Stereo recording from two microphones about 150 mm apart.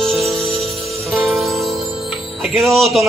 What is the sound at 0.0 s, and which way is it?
Music, centre (ahead or behind).